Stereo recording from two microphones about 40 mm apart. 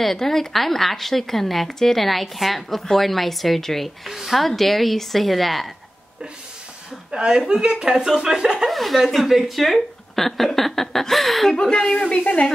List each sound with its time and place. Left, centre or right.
0.0 s a woman's voice: centre
7.1 s speech: right
8.6 s a woman's voice: centre
11.5 s speech: centre
12.2 s speech: left